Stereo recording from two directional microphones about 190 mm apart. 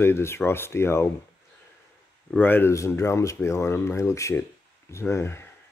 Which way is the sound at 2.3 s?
10° left (ahead or behind).